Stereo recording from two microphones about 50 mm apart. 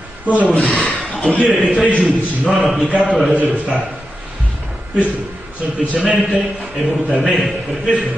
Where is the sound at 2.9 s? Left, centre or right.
Right.